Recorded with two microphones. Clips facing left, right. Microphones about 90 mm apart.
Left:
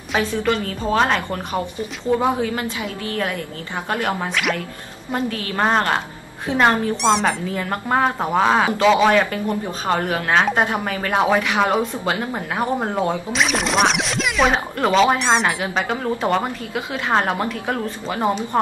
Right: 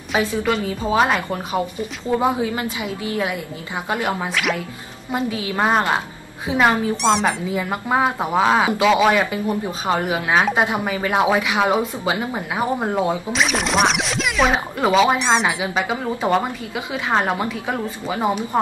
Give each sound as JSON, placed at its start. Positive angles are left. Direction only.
{"t": 0.7, "sound": "a woman's voice", "side_deg": -10}